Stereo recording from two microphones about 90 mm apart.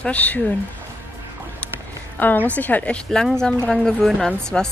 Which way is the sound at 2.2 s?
20° left (ahead or behind).